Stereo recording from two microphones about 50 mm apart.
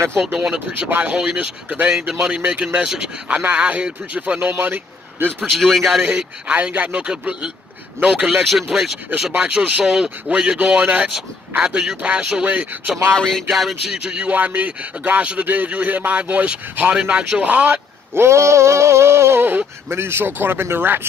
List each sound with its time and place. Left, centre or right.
0.3 s speech: right
1.9 s speech: centre
4.5 s speech: right
5.6 s speech: centre
6.0 s speech: right
8.3 s speech: centre
9.4 s speech: centre
13.5 s speech: centre
14.0 s speech: centre
14.3 s speech: right
16.9 s speech: centre
17.4 s speech: right
18.1 s a sound: right
19.9 s speech: right